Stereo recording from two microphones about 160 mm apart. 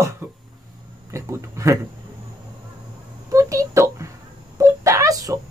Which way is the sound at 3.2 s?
20° right (ahead or behind).